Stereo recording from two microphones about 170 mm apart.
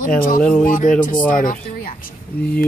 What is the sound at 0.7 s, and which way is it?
Speech, 50° left (ahead or behind).